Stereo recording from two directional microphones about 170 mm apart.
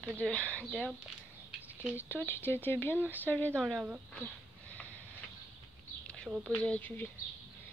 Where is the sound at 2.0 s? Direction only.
10° left (ahead or behind).